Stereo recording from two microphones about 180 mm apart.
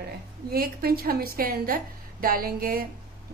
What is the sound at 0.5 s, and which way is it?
A woman's voice, 55° right (ahead or behind).